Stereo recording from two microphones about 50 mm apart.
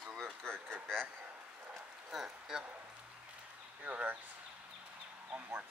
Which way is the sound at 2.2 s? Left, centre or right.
Centre.